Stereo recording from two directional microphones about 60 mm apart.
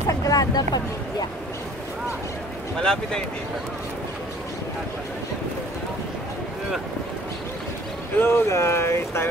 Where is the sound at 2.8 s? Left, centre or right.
Centre.